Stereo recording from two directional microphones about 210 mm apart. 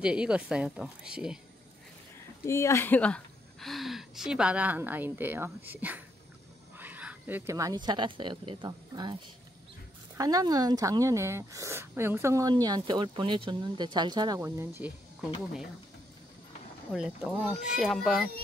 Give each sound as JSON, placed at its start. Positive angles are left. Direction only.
{"t": 0.0, "sound": "speech", "side_deg": -5}
{"t": 2.4, "sound": "a woman's voice", "side_deg": 15}
{"t": 16.9, "sound": "speech", "side_deg": 0}